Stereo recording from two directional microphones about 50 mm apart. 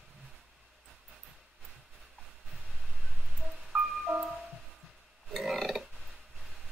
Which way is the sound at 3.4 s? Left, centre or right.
Centre.